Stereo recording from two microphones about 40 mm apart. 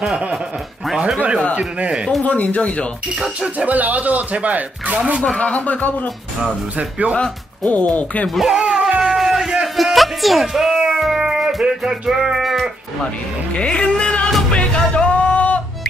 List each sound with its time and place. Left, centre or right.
0.1 s speech: centre
2.2 s speech: left
3.5 s speech: right
5.4 s speech: left
6.4 s speech: right
7.2 s speech: left
8.4 s music: centre
9.8 s a sound: centre
10.4 s speech: centre
10.9 s music: centre
13.6 s speech: left
14.5 s music: left